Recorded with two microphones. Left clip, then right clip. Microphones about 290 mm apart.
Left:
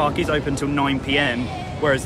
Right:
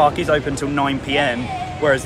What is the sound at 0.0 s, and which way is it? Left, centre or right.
Speech, centre.